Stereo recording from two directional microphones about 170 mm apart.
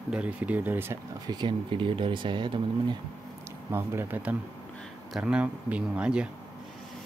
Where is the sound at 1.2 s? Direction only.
25° right (ahead or behind).